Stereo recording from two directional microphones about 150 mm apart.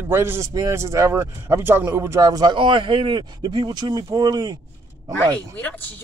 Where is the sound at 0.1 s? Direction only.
15° right (ahead or behind).